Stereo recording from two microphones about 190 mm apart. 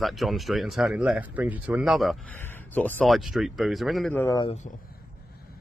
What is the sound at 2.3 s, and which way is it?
Speech, 10° left (ahead or behind).